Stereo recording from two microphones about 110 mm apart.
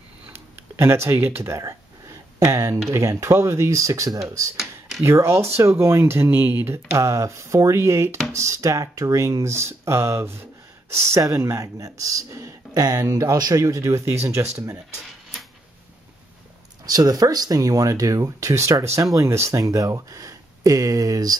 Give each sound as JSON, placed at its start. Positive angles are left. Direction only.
{"t": 0.3, "sound": "a sound", "side_deg": -20}
{"t": 2.9, "sound": "speech", "side_deg": -25}
{"t": 4.6, "sound": "computer keyboard", "side_deg": 0}
{"t": 5.0, "sound": "speech", "side_deg": -25}
{"t": 16.8, "sound": "speech", "side_deg": -35}